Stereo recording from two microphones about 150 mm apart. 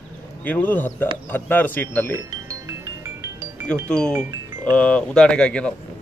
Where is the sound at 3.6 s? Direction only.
5° left (ahead or behind).